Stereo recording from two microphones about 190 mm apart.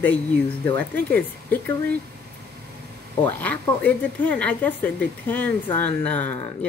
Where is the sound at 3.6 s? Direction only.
10° left (ahead or behind).